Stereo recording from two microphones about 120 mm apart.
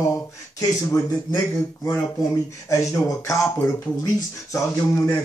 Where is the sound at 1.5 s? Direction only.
20° left (ahead or behind).